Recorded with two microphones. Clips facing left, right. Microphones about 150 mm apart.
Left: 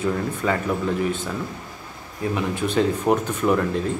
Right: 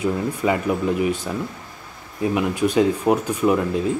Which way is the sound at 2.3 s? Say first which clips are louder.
Right 3 dB; 10° right (ahead or behind).